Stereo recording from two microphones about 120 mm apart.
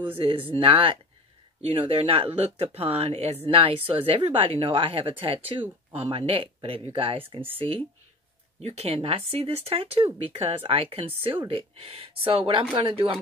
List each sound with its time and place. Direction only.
0.5 s a woman's voice: 50° right (ahead or behind)